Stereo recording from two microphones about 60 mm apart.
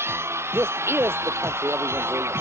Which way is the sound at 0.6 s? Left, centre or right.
Right.